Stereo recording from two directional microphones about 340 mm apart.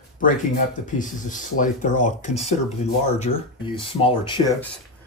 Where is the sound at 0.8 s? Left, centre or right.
Left.